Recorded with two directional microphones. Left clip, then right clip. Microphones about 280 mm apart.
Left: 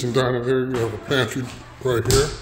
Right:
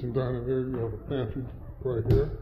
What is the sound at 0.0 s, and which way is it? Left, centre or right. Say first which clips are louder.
A man's voice: left 10 dB; left.